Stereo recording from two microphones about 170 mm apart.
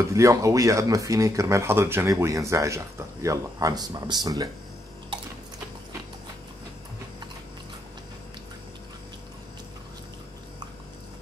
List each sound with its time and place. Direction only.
0.1 s speech: 20° right (ahead or behind)